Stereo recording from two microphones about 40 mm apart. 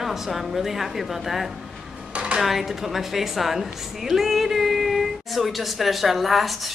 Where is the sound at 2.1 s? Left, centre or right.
Right.